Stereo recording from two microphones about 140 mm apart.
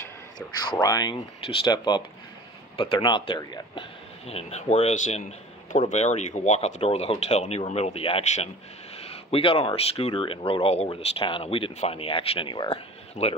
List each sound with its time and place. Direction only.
0.7 s speech: 30° left (ahead or behind)
1.1 s speech: 40° left (ahead or behind)
4.3 s speech: 50° left (ahead or behind)